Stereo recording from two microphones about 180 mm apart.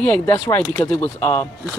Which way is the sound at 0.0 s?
10° left (ahead or behind).